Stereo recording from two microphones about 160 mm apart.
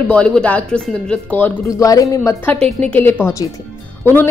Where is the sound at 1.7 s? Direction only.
20° left (ahead or behind).